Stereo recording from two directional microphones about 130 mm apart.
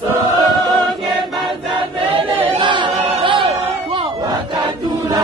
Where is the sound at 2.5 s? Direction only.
40° right (ahead or behind).